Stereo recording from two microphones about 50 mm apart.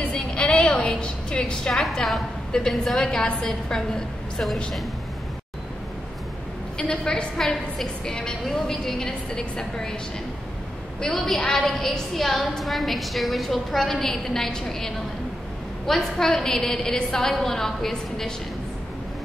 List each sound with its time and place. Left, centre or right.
0.0 s a woman's voice: left
6.8 s a woman's voice: centre
11.0 s a woman's voice: centre